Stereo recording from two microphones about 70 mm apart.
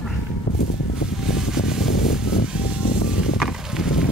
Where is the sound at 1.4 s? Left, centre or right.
Centre.